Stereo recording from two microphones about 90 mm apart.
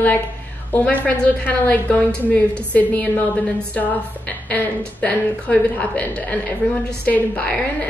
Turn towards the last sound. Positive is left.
turn(degrees=15)  # may be behind; listen again after turning